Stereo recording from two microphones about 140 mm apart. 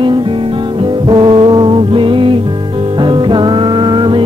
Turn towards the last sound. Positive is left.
turn(degrees=-35)  # may be behind; listen again after turning